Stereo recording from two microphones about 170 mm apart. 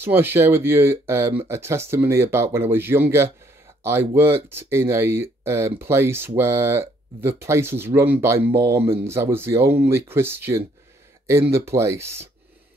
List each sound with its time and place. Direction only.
0.0 s speech: 15° right (ahead or behind)